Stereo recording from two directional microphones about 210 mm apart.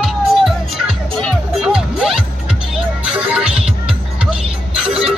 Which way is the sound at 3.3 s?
5° right (ahead or behind).